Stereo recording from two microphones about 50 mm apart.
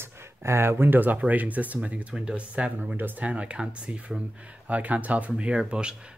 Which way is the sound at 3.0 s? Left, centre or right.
Right.